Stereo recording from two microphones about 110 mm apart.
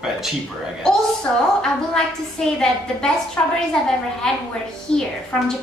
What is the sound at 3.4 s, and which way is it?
Speech, 15° left (ahead or behind).